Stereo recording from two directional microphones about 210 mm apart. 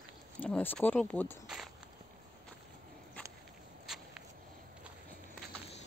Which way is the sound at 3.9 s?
Centre (ahead or behind).